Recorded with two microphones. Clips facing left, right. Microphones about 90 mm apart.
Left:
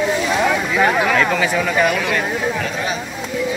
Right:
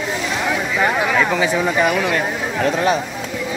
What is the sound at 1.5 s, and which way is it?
Speech, 25° right (ahead or behind).